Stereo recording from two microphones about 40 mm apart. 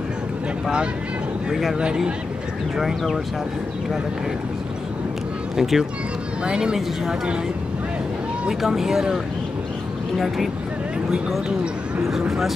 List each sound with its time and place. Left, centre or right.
1.5 s speech: centre
5.6 s speech: centre
8.6 s speech: centre
10.1 s speech: centre